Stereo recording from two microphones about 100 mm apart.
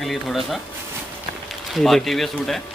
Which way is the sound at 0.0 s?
Centre (ahead or behind).